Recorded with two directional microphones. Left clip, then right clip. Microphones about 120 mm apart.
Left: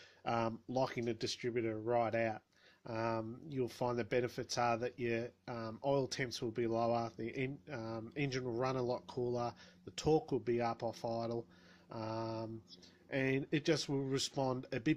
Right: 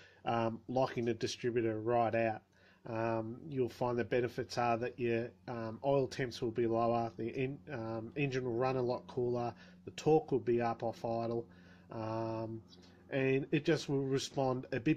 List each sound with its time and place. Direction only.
0.2 s speech: 30° left (ahead or behind)